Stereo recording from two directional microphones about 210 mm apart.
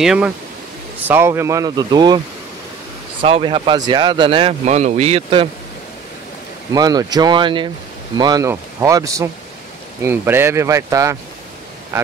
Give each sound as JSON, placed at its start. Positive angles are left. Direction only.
{"t": 0.0, "sound": "speech", "side_deg": -5}
{"t": 6.7, "sound": "speech", "side_deg": -15}